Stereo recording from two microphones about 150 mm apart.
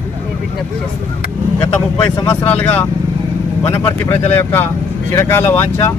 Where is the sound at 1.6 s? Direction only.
15° left (ahead or behind).